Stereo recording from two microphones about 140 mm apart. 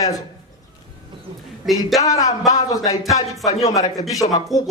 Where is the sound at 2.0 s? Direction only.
25° left (ahead or behind).